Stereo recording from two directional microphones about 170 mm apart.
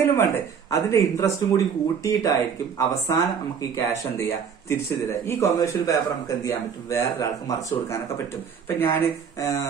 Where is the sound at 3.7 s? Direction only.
15° left (ahead or behind).